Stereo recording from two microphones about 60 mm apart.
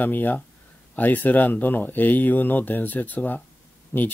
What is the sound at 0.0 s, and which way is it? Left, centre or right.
Speech, left.